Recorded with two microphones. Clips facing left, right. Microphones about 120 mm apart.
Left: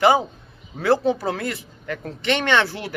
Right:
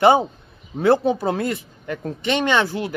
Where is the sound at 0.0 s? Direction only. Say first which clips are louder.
Right 2 dB; 25° right (ahead or behind).